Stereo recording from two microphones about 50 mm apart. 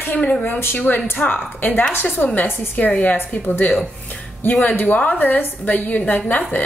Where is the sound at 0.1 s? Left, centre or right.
Left.